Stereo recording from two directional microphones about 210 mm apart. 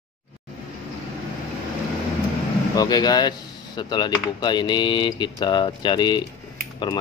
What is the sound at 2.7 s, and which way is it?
Speech, 20° left (ahead or behind).